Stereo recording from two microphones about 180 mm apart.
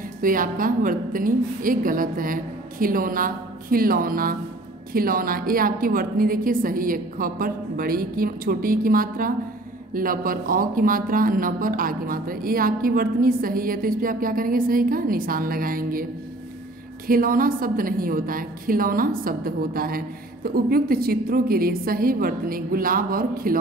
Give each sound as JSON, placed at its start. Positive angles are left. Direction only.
{"t": 0.2, "sound": "speech", "side_deg": -50}
{"t": 17.1, "sound": "speech", "side_deg": -50}